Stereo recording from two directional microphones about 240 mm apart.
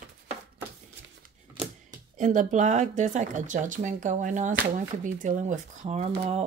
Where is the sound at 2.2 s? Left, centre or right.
Right.